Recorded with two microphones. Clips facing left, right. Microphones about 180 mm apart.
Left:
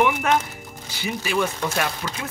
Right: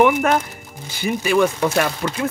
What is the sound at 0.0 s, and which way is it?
Speech, 45° right (ahead or behind).